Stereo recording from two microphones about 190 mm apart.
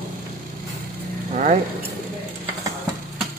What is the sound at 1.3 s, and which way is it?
Speech, 40° right (ahead or behind).